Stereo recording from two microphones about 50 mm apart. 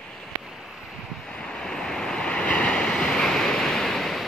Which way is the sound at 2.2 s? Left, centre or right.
Left.